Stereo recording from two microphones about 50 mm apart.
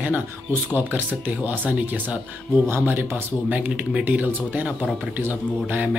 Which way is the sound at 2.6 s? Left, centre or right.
Right.